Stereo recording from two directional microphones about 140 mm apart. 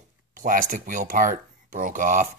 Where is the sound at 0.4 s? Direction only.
75° right (ahead or behind).